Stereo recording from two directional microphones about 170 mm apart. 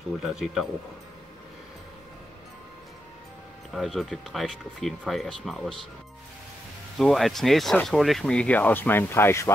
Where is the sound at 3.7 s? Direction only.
Centre (ahead or behind).